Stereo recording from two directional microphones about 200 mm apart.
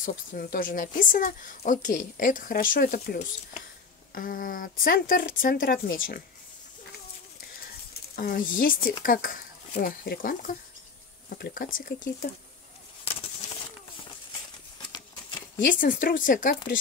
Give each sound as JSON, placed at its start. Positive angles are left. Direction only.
{"t": 0.0, "sound": "speech", "side_deg": 45}
{"t": 8.2, "sound": "speech", "side_deg": 45}
{"t": 14.8, "sound": "a sound", "side_deg": 20}
{"t": 15.6, "sound": "speech", "side_deg": 45}